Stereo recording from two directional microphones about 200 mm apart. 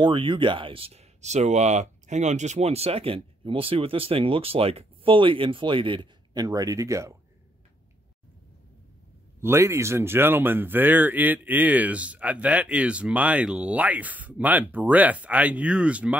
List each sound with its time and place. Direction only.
0.0 s speech: 25° right (ahead or behind)
9.4 s speech: 15° right (ahead or behind)